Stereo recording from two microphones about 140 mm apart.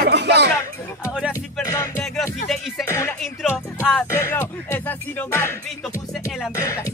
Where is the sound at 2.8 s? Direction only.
20° left (ahead or behind).